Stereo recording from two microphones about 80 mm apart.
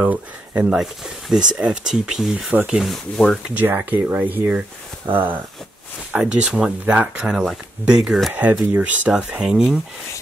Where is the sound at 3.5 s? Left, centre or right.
Right.